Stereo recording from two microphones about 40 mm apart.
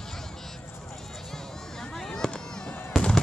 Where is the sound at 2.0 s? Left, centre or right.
Centre.